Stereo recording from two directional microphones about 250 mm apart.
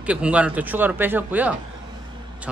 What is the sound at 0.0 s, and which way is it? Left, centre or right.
Speech, centre.